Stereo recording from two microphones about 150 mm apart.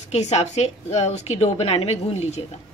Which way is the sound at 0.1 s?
45° left (ahead or behind).